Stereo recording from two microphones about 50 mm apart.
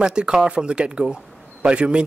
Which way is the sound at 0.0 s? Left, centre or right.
Centre.